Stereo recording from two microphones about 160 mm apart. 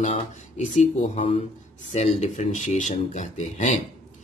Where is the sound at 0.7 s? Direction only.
40° left (ahead or behind).